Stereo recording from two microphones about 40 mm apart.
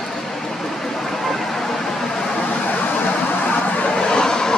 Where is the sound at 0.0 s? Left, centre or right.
Centre.